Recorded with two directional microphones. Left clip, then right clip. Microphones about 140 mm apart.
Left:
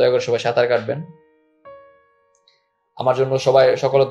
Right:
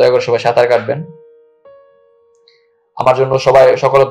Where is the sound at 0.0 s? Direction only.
30° left (ahead or behind).